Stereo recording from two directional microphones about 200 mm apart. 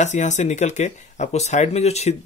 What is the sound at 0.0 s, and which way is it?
Speech, 35° left (ahead or behind).